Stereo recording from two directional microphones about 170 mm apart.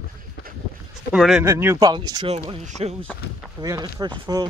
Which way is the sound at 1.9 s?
30° right (ahead or behind).